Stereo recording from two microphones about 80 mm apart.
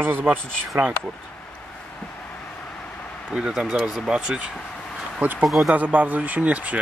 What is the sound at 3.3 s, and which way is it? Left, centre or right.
Speech, centre.